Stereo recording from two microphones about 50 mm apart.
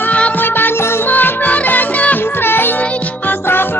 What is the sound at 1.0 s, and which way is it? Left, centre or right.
Music, left.